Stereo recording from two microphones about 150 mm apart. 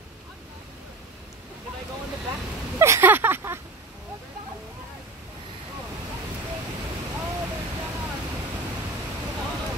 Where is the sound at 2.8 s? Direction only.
15° right (ahead or behind).